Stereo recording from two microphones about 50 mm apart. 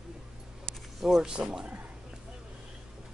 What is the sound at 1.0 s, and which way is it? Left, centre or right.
Speech, centre.